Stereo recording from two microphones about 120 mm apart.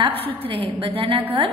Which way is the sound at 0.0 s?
55° right (ahead or behind).